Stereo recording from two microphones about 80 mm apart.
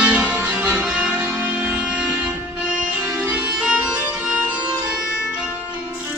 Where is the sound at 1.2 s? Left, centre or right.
Right.